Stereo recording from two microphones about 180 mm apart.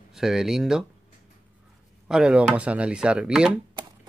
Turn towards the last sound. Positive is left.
turn(degrees=-5)  # may be behind; listen again after turning